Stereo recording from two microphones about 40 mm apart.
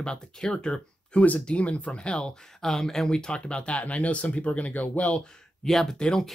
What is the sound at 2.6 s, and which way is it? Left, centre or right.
Speech, centre.